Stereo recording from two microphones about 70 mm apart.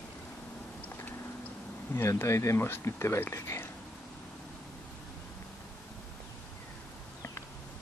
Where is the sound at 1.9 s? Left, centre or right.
Left.